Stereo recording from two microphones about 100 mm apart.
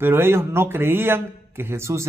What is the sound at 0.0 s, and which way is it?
Speech, 20° right (ahead or behind).